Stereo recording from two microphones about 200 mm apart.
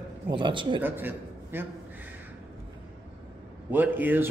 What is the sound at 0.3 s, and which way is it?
Speech, 25° right (ahead or behind).